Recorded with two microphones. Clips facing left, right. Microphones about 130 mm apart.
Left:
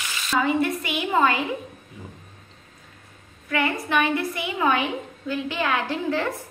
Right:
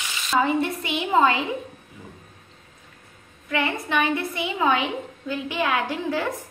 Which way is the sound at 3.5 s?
20° right (ahead or behind).